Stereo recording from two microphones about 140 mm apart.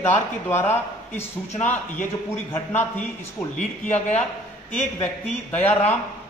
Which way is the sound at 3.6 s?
55° left (ahead or behind).